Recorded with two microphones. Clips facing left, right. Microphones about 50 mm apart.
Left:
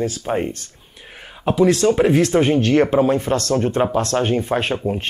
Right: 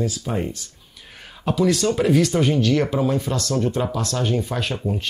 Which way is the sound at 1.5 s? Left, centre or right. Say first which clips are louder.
Left 4 dB; left.